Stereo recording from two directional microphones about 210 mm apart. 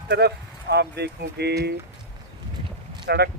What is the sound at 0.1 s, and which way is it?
Speech, 50° right (ahead or behind).